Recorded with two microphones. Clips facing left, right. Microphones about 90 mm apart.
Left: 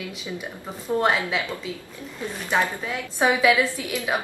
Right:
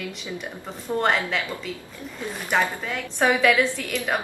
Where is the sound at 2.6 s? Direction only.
5° left (ahead or behind).